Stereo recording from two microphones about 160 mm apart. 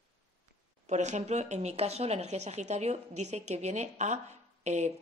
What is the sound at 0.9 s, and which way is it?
A woman's voice, 45° right (ahead or behind).